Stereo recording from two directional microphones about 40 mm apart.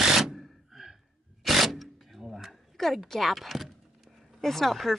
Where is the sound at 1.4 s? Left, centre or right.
Centre.